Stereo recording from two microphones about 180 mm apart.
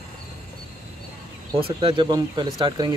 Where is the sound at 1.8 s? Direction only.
30° right (ahead or behind).